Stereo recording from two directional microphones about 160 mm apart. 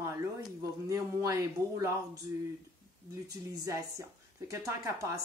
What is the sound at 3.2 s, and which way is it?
A woman's voice, 20° right (ahead or behind).